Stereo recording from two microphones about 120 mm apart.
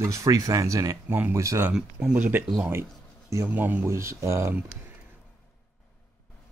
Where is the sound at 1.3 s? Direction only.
25° right (ahead or behind).